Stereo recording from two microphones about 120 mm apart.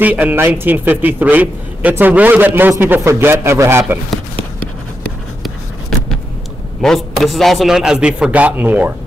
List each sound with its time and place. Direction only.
0.0 s a man's voice: 15° right (ahead or behind)
6.8 s a man's voice: 5° left (ahead or behind); by 8.9 s 15° right (ahead or behind)